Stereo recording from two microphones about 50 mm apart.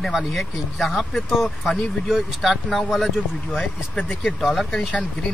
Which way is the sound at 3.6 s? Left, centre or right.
Left.